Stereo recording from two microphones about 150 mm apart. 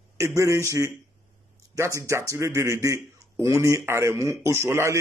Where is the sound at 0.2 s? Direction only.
20° right (ahead or behind).